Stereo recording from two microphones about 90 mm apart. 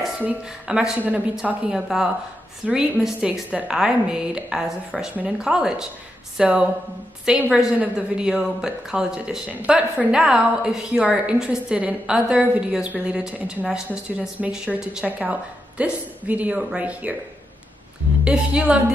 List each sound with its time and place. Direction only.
0.2 s a woman's voice: 15° right (ahead or behind)
9.5 s a woman's voice: 15° right (ahead or behind)
10.1 s a woman's voice: 5° right (ahead or behind)
18.2 s a woman's voice: 10° right (ahead or behind)